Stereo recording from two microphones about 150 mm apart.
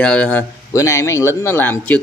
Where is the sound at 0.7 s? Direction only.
20° left (ahead or behind).